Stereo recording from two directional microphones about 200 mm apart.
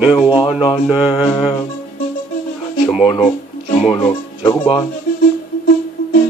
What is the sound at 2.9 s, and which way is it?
Speech, centre (ahead or behind).